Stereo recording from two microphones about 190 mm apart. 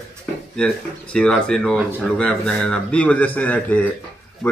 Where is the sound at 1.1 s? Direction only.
5° left (ahead or behind).